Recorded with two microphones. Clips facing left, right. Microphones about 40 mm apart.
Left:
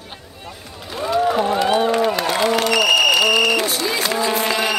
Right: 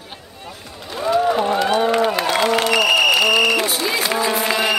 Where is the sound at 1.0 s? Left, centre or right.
Centre.